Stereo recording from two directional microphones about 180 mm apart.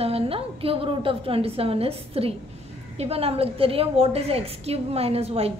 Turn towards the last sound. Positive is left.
turn(degrees=-35)  # may be behind; listen again after turning